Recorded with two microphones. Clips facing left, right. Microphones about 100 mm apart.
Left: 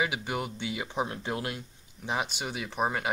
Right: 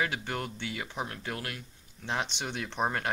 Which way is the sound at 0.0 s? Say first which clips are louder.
Left 2 dB; 10° left (ahead or behind).